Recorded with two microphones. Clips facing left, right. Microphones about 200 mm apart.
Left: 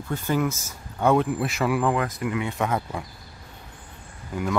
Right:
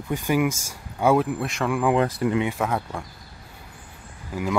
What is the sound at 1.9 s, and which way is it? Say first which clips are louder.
Speech: right 5 dB; 30° right (ahead or behind).